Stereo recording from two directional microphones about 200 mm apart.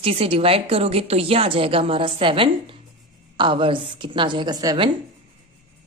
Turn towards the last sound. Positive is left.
turn(degrees=-20)  # may be behind; listen again after turning